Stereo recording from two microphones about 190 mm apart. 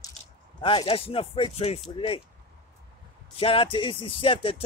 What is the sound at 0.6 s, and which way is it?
Speech, 25° left (ahead or behind).